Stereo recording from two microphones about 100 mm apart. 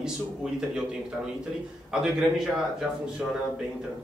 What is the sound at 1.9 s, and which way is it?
Speech, 5° right (ahead or behind).